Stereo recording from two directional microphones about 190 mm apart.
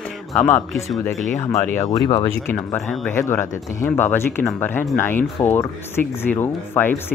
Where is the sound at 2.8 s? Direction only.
Centre (ahead or behind).